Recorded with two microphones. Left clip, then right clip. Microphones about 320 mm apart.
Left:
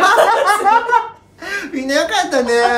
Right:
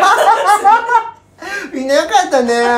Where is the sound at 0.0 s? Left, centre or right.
Centre.